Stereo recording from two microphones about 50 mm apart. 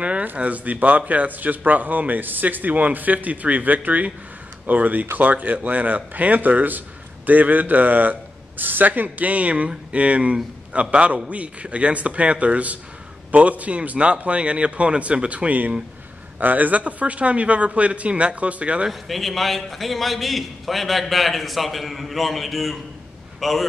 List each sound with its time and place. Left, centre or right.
0.0 s a sound: right
0.3 s speech: right
18.9 s a man's voice: centre